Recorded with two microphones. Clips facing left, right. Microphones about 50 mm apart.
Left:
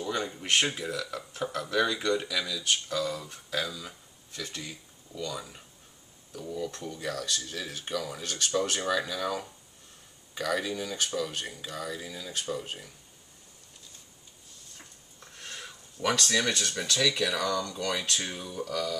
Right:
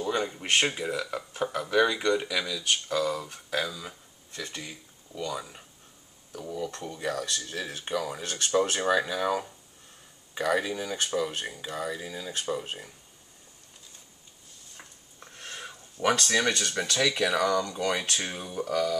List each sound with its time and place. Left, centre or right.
0.0 s speech: centre
6.4 s speech: right
15.3 s a sound: centre
16.0 s speech: centre
16.3 s speech: centre
18.2 s speech: right